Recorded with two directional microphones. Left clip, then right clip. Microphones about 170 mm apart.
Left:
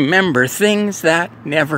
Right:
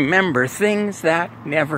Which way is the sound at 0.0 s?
45° left (ahead or behind).